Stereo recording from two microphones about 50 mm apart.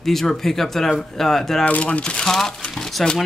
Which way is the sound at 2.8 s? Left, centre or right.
Centre.